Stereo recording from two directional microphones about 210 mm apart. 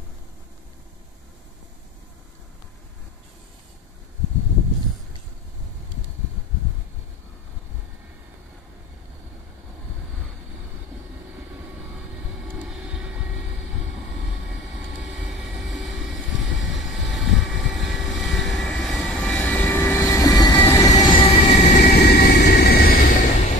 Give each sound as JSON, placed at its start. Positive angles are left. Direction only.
{"t": 12.4, "sound": "vehicle", "side_deg": -5}
{"t": 15.2, "sound": "vehicle", "side_deg": 0}
{"t": 21.2, "sound": "train", "side_deg": 35}
{"t": 21.9, "sound": "vehicle", "side_deg": 50}